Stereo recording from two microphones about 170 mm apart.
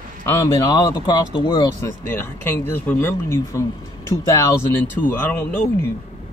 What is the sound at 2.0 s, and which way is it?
Speech, 10° left (ahead or behind).